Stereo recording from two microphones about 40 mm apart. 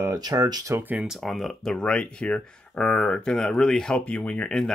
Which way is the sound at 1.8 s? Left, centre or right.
Left.